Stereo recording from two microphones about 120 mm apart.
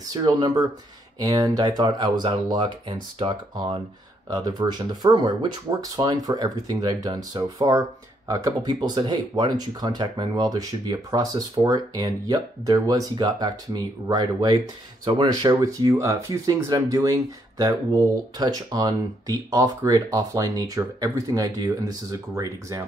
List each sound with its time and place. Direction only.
0.1 s speech: 30° right (ahead or behind)
4.3 s speech: 30° right (ahead or behind)